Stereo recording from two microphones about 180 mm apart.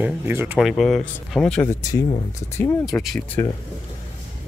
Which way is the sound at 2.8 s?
Centre (ahead or behind).